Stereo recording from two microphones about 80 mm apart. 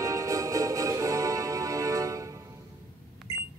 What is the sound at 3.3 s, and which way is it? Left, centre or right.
Cash register, right.